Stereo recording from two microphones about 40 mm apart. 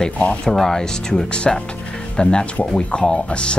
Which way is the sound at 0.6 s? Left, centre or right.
Centre.